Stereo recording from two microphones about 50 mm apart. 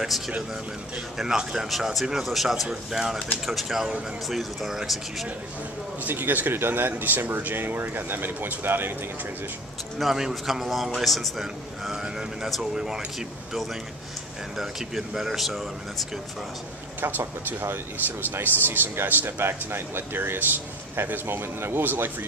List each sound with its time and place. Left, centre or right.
1.1 s a man's voice: centre
6.0 s speech: right
9.9 s a man's voice: centre
14.6 s a man's voice: centre
17.0 s speech: right
20.9 s speech: right